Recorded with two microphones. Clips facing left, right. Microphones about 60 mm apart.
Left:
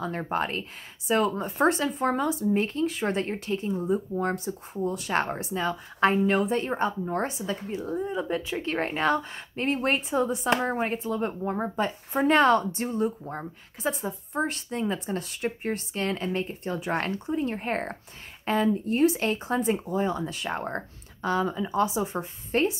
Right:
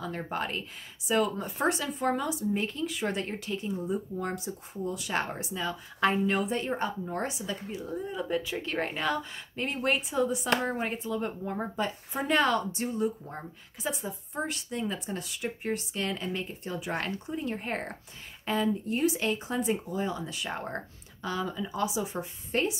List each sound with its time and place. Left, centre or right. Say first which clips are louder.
0.0 s speech: left 5 dB; left